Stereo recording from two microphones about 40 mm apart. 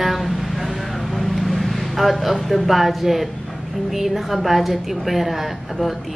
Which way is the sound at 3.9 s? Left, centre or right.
Centre.